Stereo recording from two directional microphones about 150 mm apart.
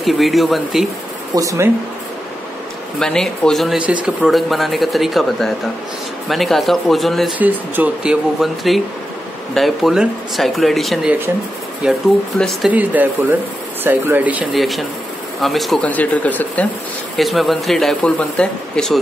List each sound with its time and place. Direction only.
0.0 s speech: centre (ahead or behind)
1.3 s speech: 20° right (ahead or behind)
3.0 s speech: 5° left (ahead or behind)
7.3 s speech: 10° right (ahead or behind)
12.7 s speech: 10° right (ahead or behind); by 16.6 s 10° left (ahead or behind)
17.2 s speech: centre (ahead or behind)